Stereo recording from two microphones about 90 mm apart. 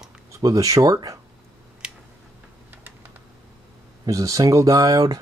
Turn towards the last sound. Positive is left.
turn(degrees=-45)  # may be behind; listen again after turning